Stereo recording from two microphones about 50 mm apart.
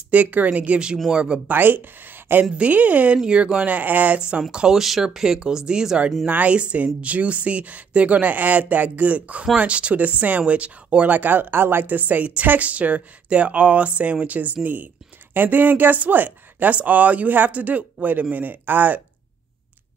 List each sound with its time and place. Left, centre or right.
0.1 s a woman's voice: right
1.1 s a woman's voice: centre
1.5 s speech: right
2.5 s a woman's voice: right
4.4 s speech: centre
6.2 s a woman's voice: right
11.1 s speech: right